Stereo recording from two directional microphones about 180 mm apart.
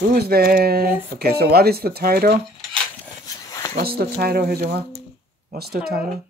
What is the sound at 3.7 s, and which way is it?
Speech, 60° right (ahead or behind).